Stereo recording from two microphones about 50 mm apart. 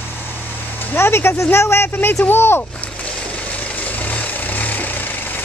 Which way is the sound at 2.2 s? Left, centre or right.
Left.